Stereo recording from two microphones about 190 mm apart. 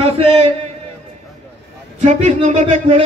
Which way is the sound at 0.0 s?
30° right (ahead or behind).